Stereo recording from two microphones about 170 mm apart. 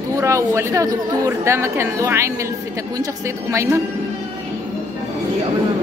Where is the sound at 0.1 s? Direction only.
20° right (ahead or behind).